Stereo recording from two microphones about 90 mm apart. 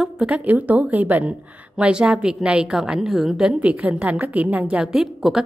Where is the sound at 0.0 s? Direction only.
10° right (ahead or behind).